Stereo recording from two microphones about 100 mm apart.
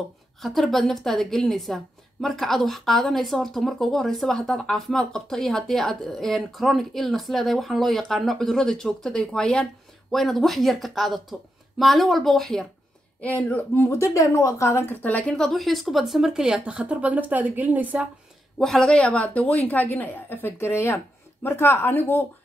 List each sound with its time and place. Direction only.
0.4 s speech: centre (ahead or behind)
13.2 s speech: 15° left (ahead or behind); by 18.0 s 15° right (ahead or behind)
18.6 s a woman's voice: 5° left (ahead or behind); by 22.2 s 20° left (ahead or behind)